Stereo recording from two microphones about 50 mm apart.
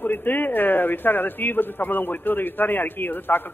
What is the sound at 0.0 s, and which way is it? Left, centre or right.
A man's voice, left.